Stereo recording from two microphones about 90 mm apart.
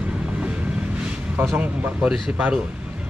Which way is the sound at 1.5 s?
15° right (ahead or behind).